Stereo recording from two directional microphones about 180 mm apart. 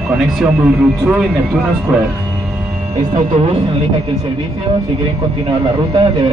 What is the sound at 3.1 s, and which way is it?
Speech, 30° right (ahead or behind).